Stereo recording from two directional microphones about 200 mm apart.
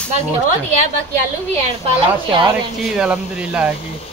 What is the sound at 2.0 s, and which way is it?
Speech, 25° right (ahead or behind).